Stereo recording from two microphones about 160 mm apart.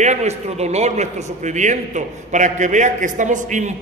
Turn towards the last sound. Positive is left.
turn(degrees=-50)  # may be behind; listen again after turning